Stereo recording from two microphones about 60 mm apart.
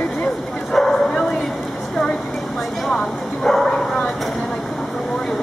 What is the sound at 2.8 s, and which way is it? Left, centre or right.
Bow-wow, centre.